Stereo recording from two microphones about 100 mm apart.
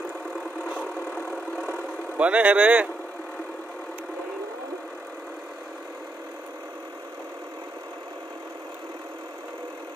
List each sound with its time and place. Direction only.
2.1 s speech: 15° right (ahead or behind)